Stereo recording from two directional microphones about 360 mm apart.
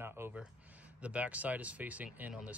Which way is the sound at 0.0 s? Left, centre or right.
Centre.